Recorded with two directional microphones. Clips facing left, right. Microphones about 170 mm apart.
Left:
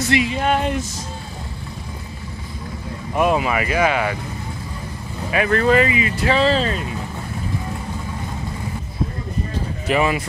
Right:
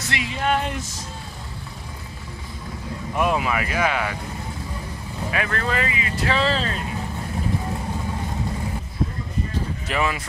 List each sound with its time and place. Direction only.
0.1 s speech: 5° left (ahead or behind)
3.2 s speech: 5° left (ahead or behind)
5.3 s speech: 15° left (ahead or behind)
9.8 s speech: 15° left (ahead or behind)